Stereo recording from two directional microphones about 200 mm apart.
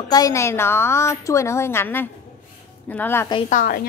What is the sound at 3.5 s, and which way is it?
Speech, 45° left (ahead or behind).